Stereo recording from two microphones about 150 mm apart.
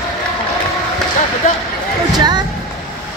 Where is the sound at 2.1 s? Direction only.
25° right (ahead or behind).